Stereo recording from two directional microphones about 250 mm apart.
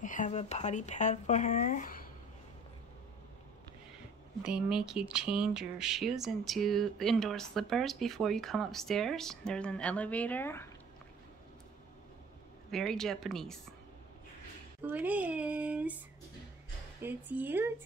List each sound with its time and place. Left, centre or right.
0.0 s speech: left
4.4 s speech: centre
12.7 s speech: centre
14.8 s speech: centre
17.0 s a woman's voice: centre